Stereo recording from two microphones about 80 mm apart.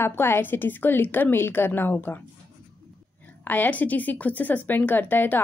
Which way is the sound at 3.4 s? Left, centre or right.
Left.